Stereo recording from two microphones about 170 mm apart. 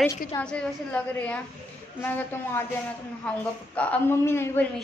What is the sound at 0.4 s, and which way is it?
Speech, 5° left (ahead or behind).